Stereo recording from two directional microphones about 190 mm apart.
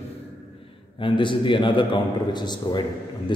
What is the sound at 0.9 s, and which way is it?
A man's voice, 25° left (ahead or behind).